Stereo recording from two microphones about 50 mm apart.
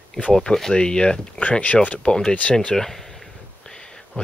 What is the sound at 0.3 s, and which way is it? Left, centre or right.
Speech, centre.